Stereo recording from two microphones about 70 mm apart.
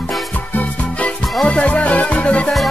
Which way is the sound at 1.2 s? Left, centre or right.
Centre.